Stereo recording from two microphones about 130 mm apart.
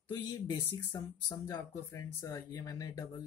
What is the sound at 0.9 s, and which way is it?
Speech, 30° left (ahead or behind).